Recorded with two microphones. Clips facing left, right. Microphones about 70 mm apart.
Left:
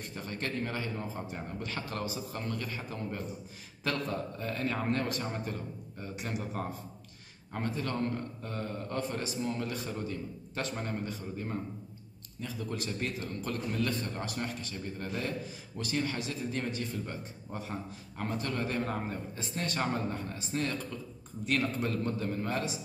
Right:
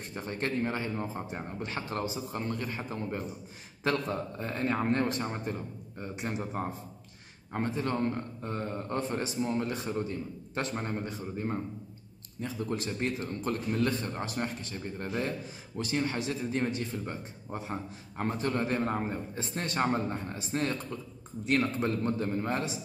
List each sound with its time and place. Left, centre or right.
0.1 s a man's voice: right